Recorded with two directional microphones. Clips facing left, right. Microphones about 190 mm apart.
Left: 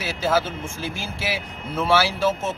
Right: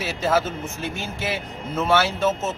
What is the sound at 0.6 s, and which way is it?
Speech, 30° left (ahead or behind).